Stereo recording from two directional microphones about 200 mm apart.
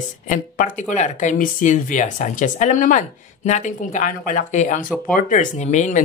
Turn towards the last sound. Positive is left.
turn(degrees=35)  # may be behind; listen again after turning